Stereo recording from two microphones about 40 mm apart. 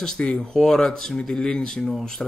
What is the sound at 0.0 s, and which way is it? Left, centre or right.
Speech, centre.